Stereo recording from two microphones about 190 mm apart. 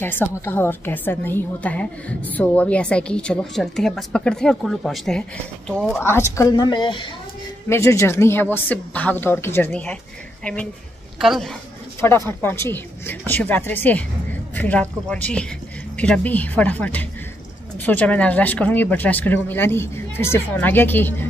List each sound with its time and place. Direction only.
0.0 s a woman's voice: 10° left (ahead or behind)
7.6 s a woman's voice: 15° left (ahead or behind)
12.3 s a woman's voice: 10° left (ahead or behind)